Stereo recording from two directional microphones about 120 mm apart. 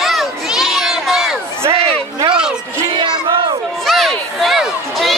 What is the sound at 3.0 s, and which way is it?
Crowd, 40° right (ahead or behind).